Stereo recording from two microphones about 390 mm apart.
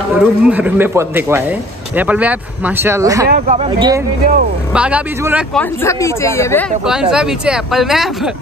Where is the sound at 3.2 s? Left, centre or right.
Centre.